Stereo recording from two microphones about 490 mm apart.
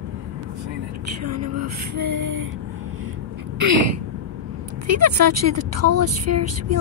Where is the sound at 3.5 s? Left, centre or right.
Right.